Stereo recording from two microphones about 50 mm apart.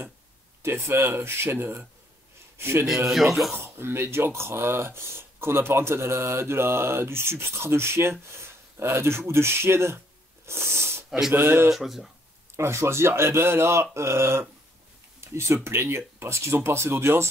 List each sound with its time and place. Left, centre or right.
0.6 s a man's voice: right
3.1 s speech: centre
3.6 s speech: right
10.4 s a sound: right
11.1 s speech: centre
11.3 s speech: right
11.7 s speech: centre
12.5 s speech: right